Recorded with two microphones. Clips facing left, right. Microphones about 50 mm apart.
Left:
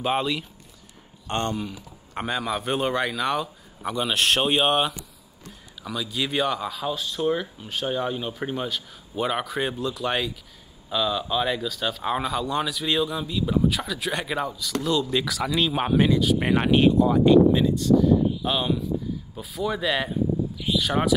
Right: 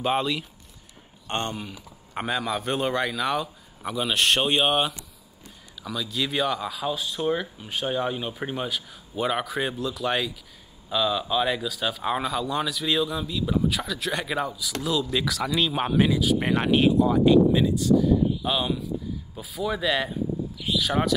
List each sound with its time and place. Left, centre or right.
0.0 s speech: centre
1.2 s speech: right
1.7 s a sound: centre
2.3 s speech: centre